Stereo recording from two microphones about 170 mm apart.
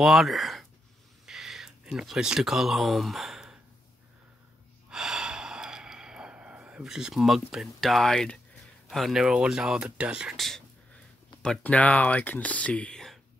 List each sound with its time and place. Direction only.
0.0 s speech: centre (ahead or behind)
1.2 s a sound: 5° right (ahead or behind)
4.8 s snort: 5° right (ahead or behind)
8.8 s speech: centre (ahead or behind)